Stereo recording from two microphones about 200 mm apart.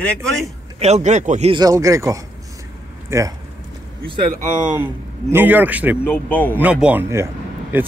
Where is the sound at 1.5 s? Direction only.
20° right (ahead or behind).